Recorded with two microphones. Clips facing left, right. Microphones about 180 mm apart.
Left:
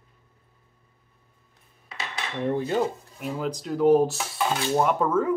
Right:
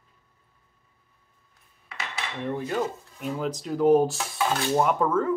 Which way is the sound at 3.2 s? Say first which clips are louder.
Even; centre (ahead or behind).